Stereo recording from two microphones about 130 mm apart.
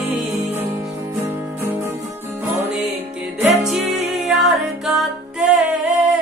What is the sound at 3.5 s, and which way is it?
Music, centre (ahead or behind).